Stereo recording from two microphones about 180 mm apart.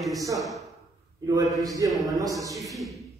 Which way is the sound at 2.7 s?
Centre (ahead or behind).